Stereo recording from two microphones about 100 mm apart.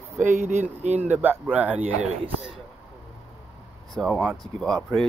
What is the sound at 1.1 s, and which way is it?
Speech, 20° right (ahead or behind).